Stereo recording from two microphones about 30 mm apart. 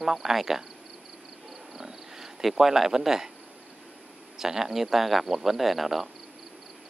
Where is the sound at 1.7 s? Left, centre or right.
Centre.